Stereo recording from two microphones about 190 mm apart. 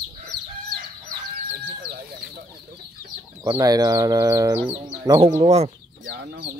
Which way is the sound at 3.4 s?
20° right (ahead or behind).